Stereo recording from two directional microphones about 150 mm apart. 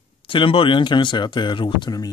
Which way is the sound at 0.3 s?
35° left (ahead or behind).